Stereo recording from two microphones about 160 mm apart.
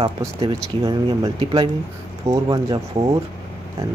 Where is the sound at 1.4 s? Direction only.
35° right (ahead or behind).